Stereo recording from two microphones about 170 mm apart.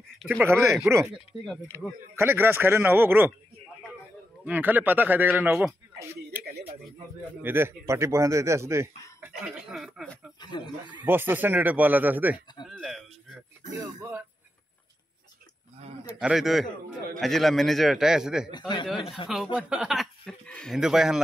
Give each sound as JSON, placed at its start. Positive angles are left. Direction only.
{"t": 0.4, "sound": "speech", "side_deg": -15}
{"t": 2.1, "sound": "speech", "side_deg": -15}
{"t": 4.5, "sound": "speech", "side_deg": -10}
{"t": 7.4, "sound": "speech", "side_deg": -15}
{"t": 9.2, "sound": "speech", "side_deg": -5}
{"t": 10.4, "sound": "speech", "side_deg": 25}
{"t": 11.1, "sound": "speech", "side_deg": -10}
{"t": 12.6, "sound": "a sound", "side_deg": 0}
{"t": 13.7, "sound": "speech", "side_deg": -20}
{"t": 16.2, "sound": "speech", "side_deg": -5}
{"t": 18.5, "sound": "speech", "side_deg": 25}
{"t": 19.2, "sound": "speech", "side_deg": 0}